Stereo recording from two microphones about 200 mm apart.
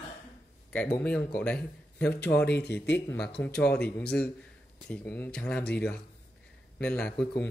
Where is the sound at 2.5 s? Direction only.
55° left (ahead or behind).